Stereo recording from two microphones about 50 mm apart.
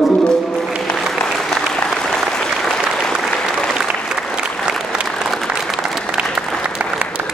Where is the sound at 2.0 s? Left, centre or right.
Centre.